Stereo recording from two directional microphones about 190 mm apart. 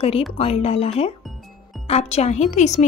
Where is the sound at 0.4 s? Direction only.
35° left (ahead or behind).